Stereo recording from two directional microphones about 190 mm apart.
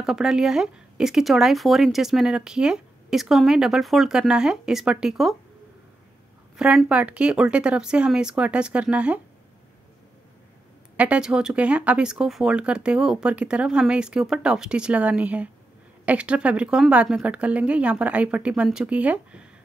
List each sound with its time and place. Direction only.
0.0 s speech: centre (ahead or behind)
6.5 s speech: 5° right (ahead or behind)
11.0 s a woman's voice: 5° right (ahead or behind)